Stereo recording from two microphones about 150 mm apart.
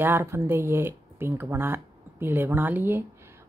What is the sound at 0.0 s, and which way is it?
Speech, 15° right (ahead or behind).